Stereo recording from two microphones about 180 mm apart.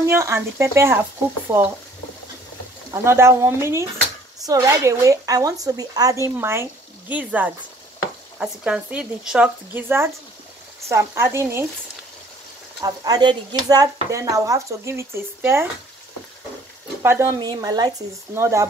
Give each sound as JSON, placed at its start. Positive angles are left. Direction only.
{"t": 0.0, "sound": "speech", "side_deg": -15}
{"t": 2.9, "sound": "speech", "side_deg": -15}
{"t": 12.8, "sound": "speech", "side_deg": -20}
{"t": 17.0, "sound": "speech", "side_deg": -15}